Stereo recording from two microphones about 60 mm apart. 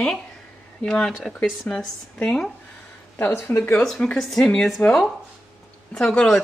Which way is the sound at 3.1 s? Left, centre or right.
Left.